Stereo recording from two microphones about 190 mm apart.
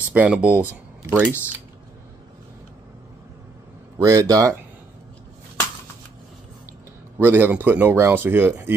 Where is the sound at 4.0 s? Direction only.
20° right (ahead or behind).